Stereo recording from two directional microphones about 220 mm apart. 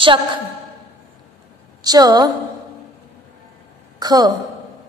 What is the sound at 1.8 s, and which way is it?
Speech, 15° right (ahead or behind).